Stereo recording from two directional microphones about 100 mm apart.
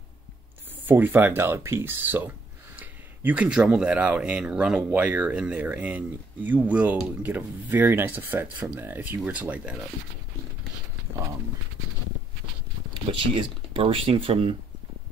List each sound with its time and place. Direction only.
0.8 s speech: 20° right (ahead or behind)
12.9 s speech: 60° right (ahead or behind)